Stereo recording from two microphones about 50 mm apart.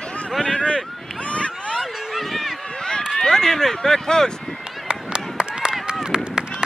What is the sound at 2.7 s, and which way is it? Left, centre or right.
Run, centre.